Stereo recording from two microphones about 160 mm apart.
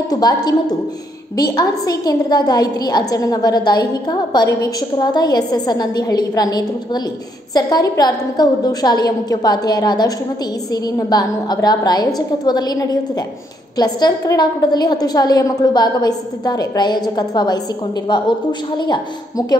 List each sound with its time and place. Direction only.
0.1 s a woman's voice: 25° left (ahead or behind)
18.8 s a woman's voice: 30° left (ahead or behind)